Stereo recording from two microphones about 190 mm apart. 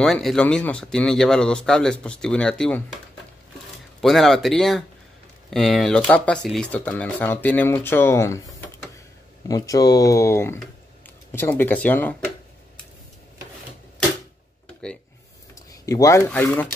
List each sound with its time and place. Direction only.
0.0 s speech: centre (ahead or behind)
4.0 s speech: centre (ahead or behind)
15.8 s speech: 15° left (ahead or behind)